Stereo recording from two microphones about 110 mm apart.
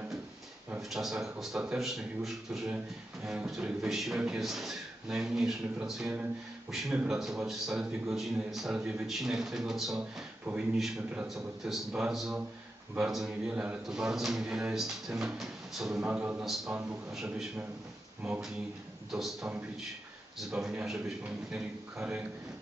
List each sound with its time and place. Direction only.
0.7 s a man's voice: 5° right (ahead or behind)
20.3 s a man's voice: 5° right (ahead or behind)